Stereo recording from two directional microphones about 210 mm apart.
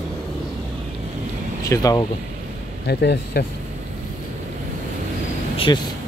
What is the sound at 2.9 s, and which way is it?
Speech, 50° left (ahead or behind).